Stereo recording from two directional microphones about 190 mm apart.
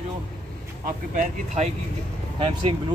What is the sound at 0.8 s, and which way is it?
Speech, 45° right (ahead or behind).